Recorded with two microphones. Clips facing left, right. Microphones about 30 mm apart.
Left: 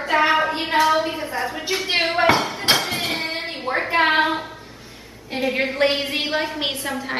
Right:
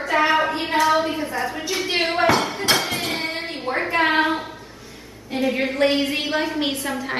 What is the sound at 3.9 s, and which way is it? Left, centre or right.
Speech, centre.